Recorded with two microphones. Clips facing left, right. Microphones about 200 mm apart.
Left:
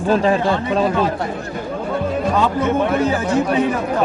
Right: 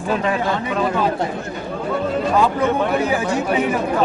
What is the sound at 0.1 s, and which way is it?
Speech, 30° left (ahead or behind).